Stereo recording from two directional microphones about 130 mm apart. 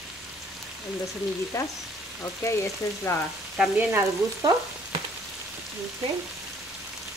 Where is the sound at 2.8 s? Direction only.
25° left (ahead or behind).